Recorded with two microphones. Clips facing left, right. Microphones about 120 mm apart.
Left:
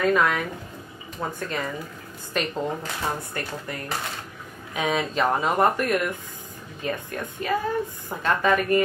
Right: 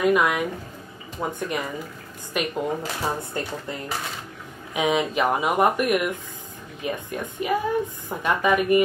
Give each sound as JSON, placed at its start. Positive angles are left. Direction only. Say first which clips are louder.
{"t": 0.0, "sound": "a woman's voice", "louder": "right 1 dB", "side_deg": -15}
{"t": 3.2, "sound": "a woman's voice", "louder": "right 2 dB", "side_deg": -20}